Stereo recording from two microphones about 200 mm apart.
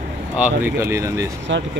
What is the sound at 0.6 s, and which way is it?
Speech, 15° right (ahead or behind).